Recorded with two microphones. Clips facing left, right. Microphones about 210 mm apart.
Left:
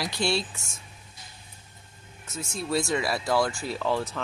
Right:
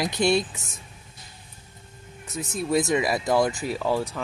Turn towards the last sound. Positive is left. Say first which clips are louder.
# right 2 dB
turn(degrees=-10)  # may be behind; listen again after turning